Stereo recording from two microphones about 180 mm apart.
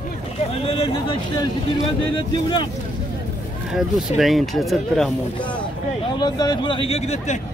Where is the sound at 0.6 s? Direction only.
30° left (ahead or behind).